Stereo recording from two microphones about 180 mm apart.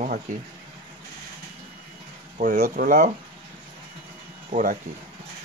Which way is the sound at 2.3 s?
45° right (ahead or behind).